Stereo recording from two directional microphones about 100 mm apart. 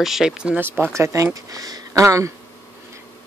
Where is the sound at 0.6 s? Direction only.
25° right (ahead or behind).